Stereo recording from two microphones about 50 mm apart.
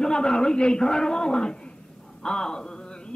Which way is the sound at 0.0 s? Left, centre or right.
Centre.